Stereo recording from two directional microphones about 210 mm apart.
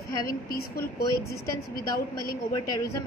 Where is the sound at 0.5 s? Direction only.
45° left (ahead or behind).